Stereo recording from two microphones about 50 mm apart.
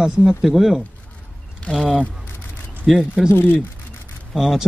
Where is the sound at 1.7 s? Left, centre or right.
Left.